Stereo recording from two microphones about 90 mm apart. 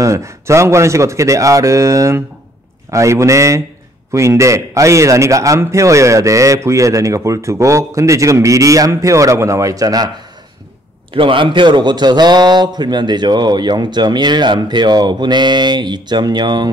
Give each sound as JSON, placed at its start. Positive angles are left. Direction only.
{"t": 0.0, "sound": "a man's voice", "side_deg": -35}
{"t": 11.1, "sound": "a man's voice", "side_deg": -70}